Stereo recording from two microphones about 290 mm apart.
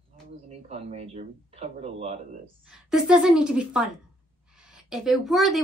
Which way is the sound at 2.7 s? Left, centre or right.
Centre.